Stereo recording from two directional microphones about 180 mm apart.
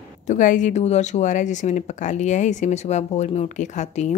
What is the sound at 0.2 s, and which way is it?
A woman's voice, 45° left (ahead or behind).